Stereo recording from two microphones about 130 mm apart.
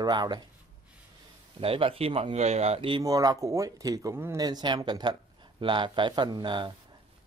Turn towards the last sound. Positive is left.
turn(degrees=-40)  # may be behind; listen again after turning